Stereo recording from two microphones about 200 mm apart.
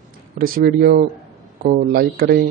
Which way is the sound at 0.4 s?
50° right (ahead or behind).